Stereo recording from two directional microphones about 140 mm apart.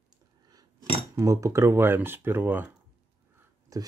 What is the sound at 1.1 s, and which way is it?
Speech, 20° right (ahead or behind).